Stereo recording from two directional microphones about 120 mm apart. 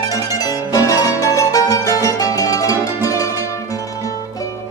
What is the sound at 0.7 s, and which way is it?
Music, 30° left (ahead or behind).